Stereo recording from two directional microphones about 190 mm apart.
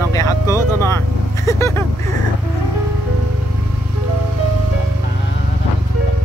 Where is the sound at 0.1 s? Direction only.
15° left (ahead or behind).